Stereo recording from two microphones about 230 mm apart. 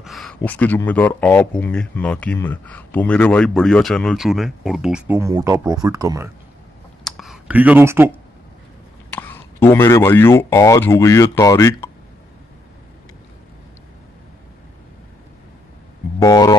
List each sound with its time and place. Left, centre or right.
0.0 s speech: centre
7.1 s a sound: centre
9.1 s speech: centre
16.2 s speech: centre